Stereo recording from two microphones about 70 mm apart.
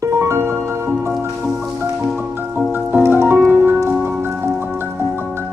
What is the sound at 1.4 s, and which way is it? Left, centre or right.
Music, centre.